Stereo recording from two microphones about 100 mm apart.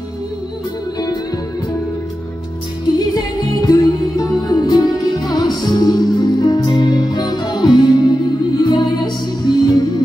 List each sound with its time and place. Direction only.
3.2 s music: 35° left (ahead or behind)